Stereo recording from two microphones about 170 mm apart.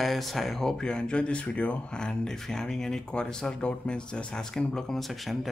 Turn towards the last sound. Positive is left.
turn(degrees=0)  # may be behind; listen again after turning